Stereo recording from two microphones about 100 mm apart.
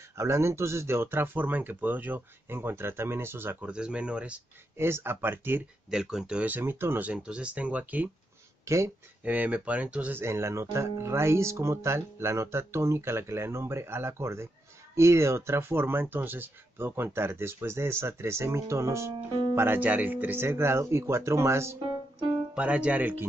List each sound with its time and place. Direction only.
0.2 s speech: 30° right (ahead or behind)
3.6 s speech: 10° right (ahead or behind)
4.7 s speech: 25° right (ahead or behind)
5.9 s speech: 5° right (ahead or behind)
8.6 s speech: 30° right (ahead or behind)
9.2 s speech: 15° right (ahead or behind)
22.5 s speech: 15° right (ahead or behind)